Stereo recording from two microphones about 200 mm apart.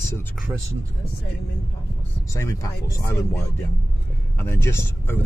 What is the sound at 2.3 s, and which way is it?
Speech, 15° left (ahead or behind).